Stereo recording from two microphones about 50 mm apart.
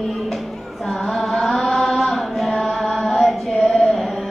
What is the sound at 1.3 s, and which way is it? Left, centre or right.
Chant, centre.